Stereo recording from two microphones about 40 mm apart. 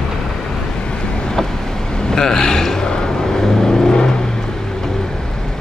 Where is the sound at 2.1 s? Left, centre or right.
Centre.